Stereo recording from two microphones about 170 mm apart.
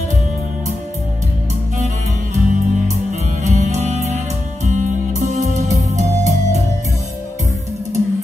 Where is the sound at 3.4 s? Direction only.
40° right (ahead or behind).